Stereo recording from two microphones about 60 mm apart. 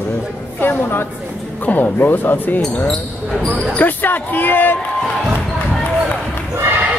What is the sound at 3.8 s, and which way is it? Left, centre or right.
Speech, left.